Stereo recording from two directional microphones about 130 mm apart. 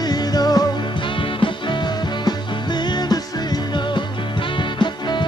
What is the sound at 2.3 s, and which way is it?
Music, 35° left (ahead or behind).